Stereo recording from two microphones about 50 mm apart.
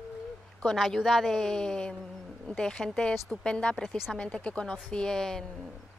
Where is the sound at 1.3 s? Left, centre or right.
Centre.